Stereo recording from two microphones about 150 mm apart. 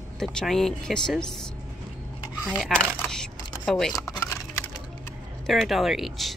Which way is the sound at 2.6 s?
Centre (ahead or behind).